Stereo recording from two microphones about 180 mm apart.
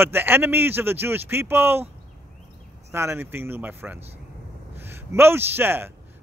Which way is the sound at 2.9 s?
15° right (ahead or behind).